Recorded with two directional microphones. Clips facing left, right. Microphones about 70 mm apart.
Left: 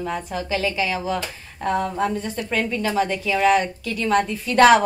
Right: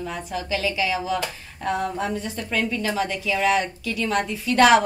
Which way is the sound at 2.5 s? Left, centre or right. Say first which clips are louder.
Left 1 dB; left.